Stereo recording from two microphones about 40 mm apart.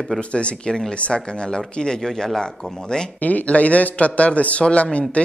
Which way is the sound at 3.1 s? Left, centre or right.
Left.